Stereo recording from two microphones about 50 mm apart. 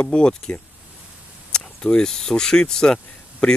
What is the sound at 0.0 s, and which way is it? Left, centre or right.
Speech, left.